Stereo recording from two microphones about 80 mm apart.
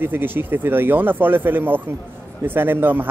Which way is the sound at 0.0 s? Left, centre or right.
Right.